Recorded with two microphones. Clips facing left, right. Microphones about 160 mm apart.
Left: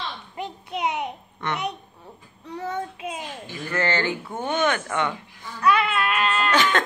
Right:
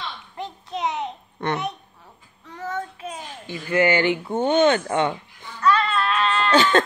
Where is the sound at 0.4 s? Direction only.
10° left (ahead or behind).